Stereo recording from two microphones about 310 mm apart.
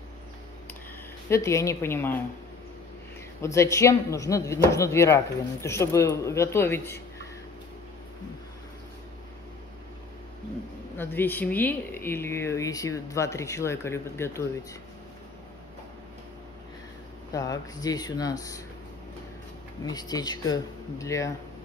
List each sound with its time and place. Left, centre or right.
1.3 s speech: centre
3.3 s speech: centre
11.0 s speech: centre
17.3 s speech: centre
19.9 s speech: centre